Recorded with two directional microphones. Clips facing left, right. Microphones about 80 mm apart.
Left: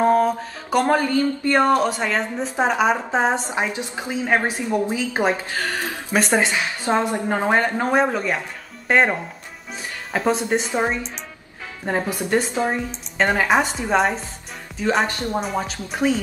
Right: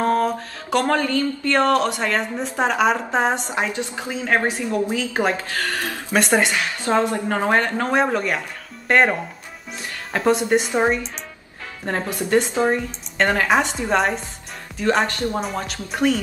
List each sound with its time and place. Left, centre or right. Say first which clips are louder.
0.0 s mantra: left 2 dB; centre
0.8 s a woman's voice: left 3 dB; centre
3.4 s a woman's voice: even; centre
6.1 s a woman's voice: right 1 dB; centre
6.5 s a woman's voice: right 1 dB; centre
7.9 s a woman's voice: right 1 dB; centre
11.8 s a woman's voice: left 1 dB; centre
15.0 s a woman's voice: right 1 dB; centre
15.4 s a woman's voice: left 2 dB; centre